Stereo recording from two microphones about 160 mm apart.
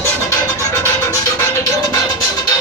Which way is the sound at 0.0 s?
15° left (ahead or behind).